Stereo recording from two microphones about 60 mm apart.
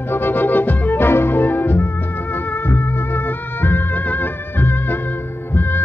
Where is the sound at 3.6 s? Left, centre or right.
Left.